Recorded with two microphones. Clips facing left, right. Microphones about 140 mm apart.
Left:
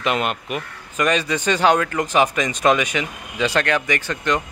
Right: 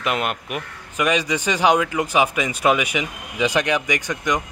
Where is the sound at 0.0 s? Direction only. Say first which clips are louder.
Left 2 dB; 5° right (ahead or behind).